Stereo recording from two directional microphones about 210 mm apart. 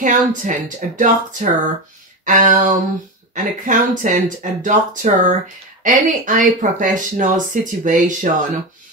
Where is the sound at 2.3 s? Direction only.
40° right (ahead or behind).